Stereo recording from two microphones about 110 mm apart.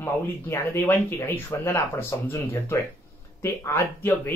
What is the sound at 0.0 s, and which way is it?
Speech, 20° left (ahead or behind).